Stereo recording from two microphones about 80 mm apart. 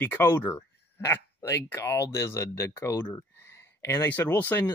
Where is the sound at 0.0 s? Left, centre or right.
Left.